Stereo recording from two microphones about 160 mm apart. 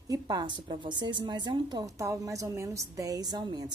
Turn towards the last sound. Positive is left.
turn(degrees=-25)  # may be behind; listen again after turning